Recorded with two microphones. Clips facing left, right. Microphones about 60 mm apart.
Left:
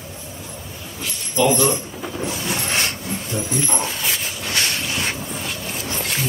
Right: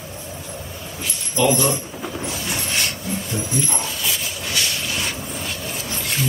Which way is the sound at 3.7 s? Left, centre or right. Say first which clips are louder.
Left 2 dB; left.